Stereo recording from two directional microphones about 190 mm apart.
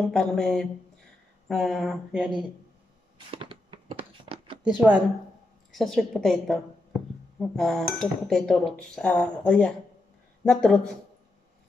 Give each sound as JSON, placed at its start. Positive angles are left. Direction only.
{"t": 0.1, "sound": "speech", "side_deg": 5}
{"t": 3.3, "sound": "a sound", "side_deg": -30}
{"t": 4.6, "sound": "speech", "side_deg": -5}